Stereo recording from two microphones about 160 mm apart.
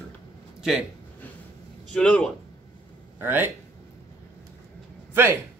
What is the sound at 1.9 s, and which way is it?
Speech, 5° left (ahead or behind).